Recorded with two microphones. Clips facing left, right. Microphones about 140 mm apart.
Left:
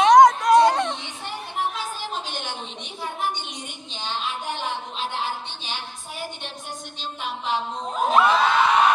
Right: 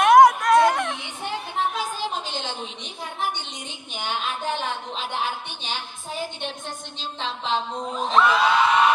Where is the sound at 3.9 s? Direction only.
15° right (ahead or behind).